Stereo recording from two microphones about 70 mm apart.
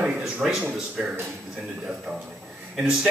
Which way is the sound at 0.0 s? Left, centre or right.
Centre.